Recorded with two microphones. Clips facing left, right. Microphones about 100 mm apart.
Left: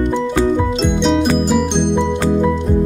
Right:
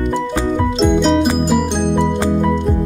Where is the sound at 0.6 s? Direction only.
Centre (ahead or behind).